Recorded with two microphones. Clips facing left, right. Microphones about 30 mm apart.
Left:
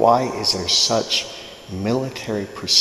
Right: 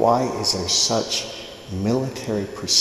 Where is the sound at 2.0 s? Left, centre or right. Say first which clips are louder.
Even; centre.